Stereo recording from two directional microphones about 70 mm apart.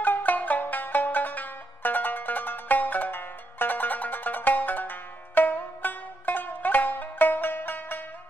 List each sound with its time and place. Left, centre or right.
0.0 s music: left